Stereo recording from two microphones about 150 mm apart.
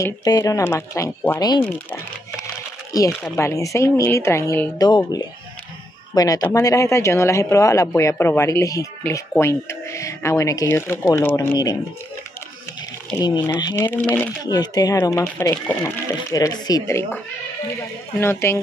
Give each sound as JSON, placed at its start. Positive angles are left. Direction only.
{"t": 0.0, "sound": "speech", "side_deg": 25}
{"t": 2.4, "sound": "a sound", "side_deg": 25}
{"t": 3.3, "sound": "speech", "side_deg": 20}
{"t": 13.2, "sound": "speech", "side_deg": 25}
{"t": 13.7, "sound": "speech", "side_deg": 10}
{"t": 14.4, "sound": "speech", "side_deg": 25}
{"t": 18.2, "sound": "speech", "side_deg": 15}